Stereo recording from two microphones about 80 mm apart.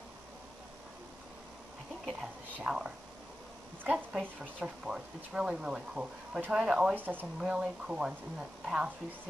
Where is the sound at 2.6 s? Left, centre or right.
Centre.